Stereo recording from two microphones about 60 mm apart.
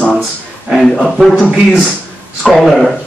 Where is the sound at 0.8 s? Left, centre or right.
Centre.